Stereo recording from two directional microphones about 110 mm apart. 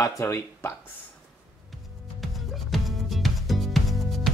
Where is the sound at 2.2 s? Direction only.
Centre (ahead or behind).